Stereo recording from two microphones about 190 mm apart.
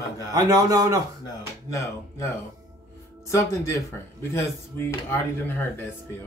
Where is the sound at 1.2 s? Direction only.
15° left (ahead or behind).